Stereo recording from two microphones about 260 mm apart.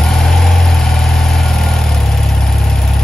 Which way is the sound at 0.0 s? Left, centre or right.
Centre.